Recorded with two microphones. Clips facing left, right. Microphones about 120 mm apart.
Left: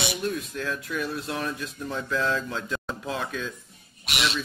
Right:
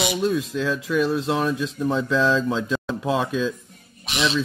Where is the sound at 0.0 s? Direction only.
90° right.